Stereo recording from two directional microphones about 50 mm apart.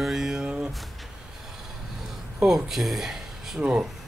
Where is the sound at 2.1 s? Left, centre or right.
Centre.